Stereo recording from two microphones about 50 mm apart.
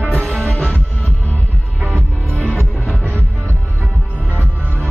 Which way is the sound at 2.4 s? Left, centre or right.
Left.